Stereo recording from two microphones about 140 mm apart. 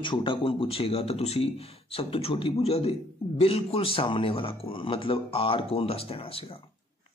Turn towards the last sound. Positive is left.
turn(degrees=40)  # may be behind; listen again after turning